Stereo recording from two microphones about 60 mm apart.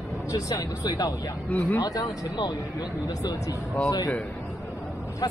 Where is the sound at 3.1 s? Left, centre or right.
Left.